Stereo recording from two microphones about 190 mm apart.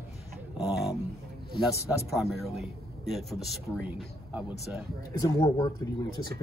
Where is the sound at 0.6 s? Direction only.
5° right (ahead or behind).